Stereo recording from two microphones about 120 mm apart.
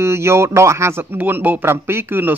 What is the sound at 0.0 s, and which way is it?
Speech, 20° right (ahead or behind).